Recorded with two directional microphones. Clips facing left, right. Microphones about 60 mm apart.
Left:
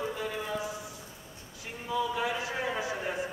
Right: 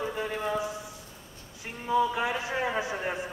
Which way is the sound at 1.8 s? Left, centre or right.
Right.